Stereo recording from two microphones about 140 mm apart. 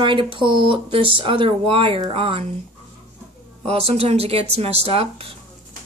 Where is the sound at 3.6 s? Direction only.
45° right (ahead or behind).